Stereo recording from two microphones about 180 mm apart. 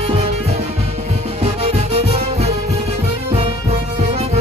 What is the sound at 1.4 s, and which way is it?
Music, 35° right (ahead or behind).